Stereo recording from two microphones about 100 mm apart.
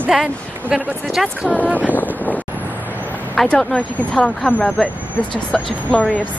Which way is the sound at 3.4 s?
5° left (ahead or behind).